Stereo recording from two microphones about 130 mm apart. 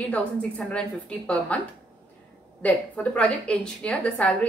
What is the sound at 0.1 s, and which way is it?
A woman's voice, 10° left (ahead or behind).